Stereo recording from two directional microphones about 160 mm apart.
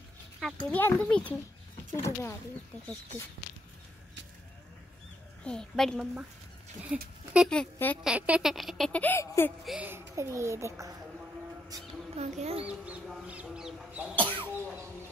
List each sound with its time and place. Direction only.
0.4 s speech: 5° left (ahead or behind); by 2.3 s 20° left (ahead or behind)
5.4 s speech: 5° left (ahead or behind)
6.9 s a sound: 10° right (ahead or behind)
7.4 s speech: 5° left (ahead or behind)
8.0 s speech: 5° right (ahead or behind); by 9.5 s 15° left (ahead or behind)
9.7 s a sound: 10° right (ahead or behind)
12.2 s speech: 40° right (ahead or behind)
12.6 s a sound: 10° right (ahead or behind)
14.1 s speech: 10° left (ahead or behind)